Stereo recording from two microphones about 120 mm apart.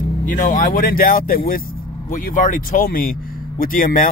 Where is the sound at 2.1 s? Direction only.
90° left.